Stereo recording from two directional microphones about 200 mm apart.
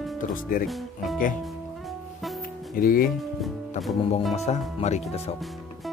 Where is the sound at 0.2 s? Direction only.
45° left (ahead or behind).